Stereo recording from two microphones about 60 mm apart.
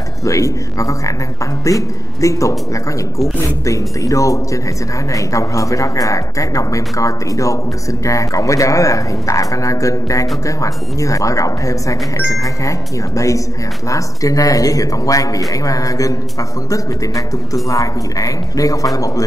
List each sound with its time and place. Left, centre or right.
0.2 s speech: left
17.6 s speech: left